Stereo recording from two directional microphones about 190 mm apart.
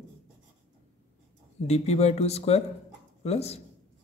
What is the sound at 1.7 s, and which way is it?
Speech, 35° left (ahead or behind).